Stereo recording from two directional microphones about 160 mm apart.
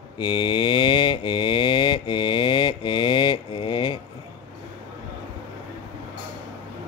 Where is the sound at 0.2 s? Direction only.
30° left (ahead or behind).